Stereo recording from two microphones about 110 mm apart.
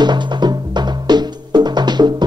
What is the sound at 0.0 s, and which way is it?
Music, 40° right (ahead or behind).